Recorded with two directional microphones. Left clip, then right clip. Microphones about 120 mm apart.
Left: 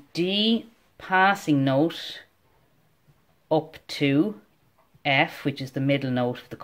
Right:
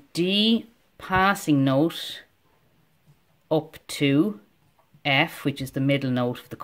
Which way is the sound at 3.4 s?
40° right (ahead or behind).